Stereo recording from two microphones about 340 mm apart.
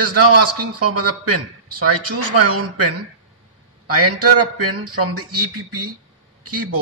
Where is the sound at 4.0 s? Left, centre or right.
Right.